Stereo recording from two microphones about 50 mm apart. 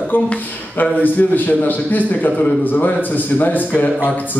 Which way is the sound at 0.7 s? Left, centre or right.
Left.